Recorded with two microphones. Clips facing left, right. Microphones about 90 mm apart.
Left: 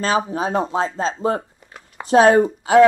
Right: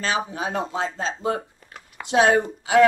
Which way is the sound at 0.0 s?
35° left (ahead or behind).